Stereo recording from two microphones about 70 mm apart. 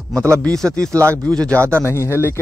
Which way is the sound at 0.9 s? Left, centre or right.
Right.